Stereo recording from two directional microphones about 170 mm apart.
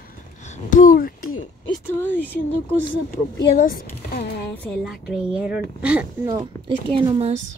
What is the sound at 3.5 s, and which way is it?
Speech, 60° left (ahead or behind).